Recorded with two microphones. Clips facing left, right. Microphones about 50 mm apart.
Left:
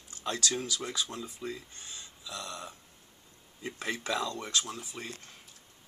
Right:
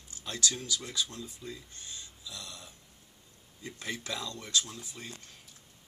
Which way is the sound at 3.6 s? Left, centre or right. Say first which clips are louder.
Left 4 dB; left.